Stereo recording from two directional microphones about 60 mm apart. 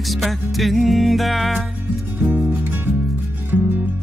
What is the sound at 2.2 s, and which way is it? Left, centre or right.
Music, right.